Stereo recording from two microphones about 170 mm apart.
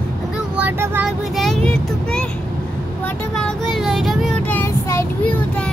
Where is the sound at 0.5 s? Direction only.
10° right (ahead or behind).